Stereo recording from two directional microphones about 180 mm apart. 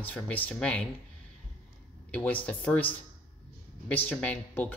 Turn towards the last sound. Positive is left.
turn(degrees=10)  # may be behind; listen again after turning